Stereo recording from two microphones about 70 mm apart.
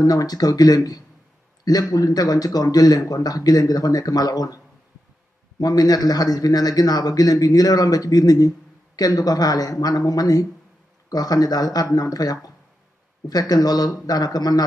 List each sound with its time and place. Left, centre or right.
0.0 s a man's voice: left
5.6 s a man's voice: left